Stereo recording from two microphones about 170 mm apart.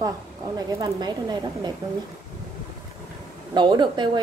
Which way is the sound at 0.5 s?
25° right (ahead or behind).